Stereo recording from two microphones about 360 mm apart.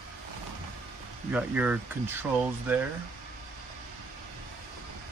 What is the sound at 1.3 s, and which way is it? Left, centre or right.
Speech, centre.